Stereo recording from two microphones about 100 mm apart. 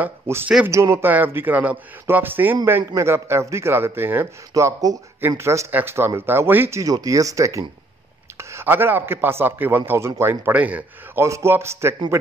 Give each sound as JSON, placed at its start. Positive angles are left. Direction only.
{"t": 0.0, "sound": "a man's voice", "side_deg": -20}
{"t": 6.8, "sound": "a man's voice", "side_deg": -35}
{"t": 11.2, "sound": "a man's voice", "side_deg": -25}